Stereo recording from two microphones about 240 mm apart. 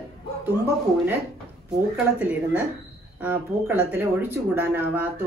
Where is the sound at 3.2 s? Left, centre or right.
Centre.